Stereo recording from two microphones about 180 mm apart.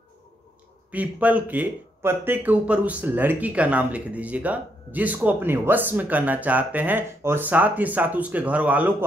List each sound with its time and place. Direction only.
0.9 s speech: 10° right (ahead or behind)